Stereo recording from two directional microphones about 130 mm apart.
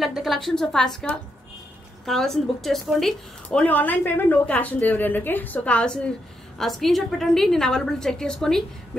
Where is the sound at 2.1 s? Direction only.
5° left (ahead or behind).